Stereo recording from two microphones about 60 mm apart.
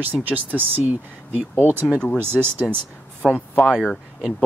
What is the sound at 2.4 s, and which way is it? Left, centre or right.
Speech, right.